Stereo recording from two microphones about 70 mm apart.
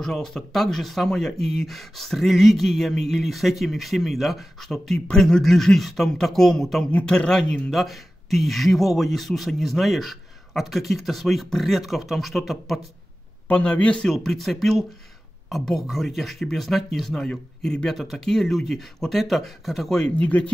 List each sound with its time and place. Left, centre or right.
0.0 s a man's voice: centre
7.7 s speech: centre
13.5 s a man's voice: centre
14.1 s a man's voice: centre
20.2 s speech: left